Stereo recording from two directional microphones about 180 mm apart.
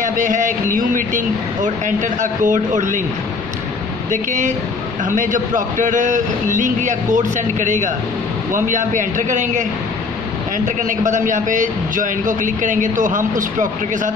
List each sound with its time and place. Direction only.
0.0 s a man's voice: 45° right (ahead or behind)
4.1 s a man's voice: 45° right (ahead or behind)